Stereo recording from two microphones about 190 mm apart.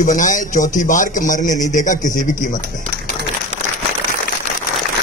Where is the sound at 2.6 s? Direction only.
55° right (ahead or behind).